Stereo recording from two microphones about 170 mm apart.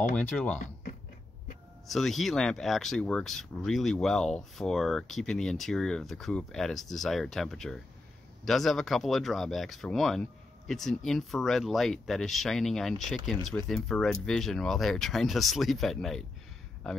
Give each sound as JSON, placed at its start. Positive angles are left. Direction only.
{"t": 1.9, "sound": "speech", "side_deg": 0}